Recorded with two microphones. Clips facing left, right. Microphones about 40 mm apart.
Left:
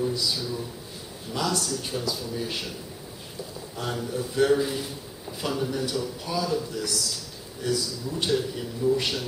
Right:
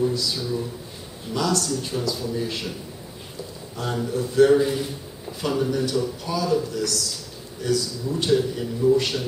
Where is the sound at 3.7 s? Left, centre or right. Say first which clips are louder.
Right 4 dB; centre.